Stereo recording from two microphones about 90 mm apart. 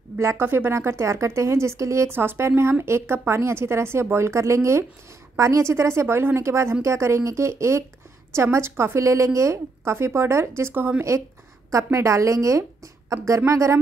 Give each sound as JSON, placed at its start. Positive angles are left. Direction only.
{"t": 0.2, "sound": "a woman's voice", "side_deg": -30}
{"t": 11.7, "sound": "a woman's voice", "side_deg": -35}